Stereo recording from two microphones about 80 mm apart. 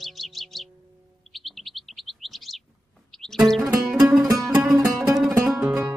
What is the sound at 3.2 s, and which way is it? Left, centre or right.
Music, centre.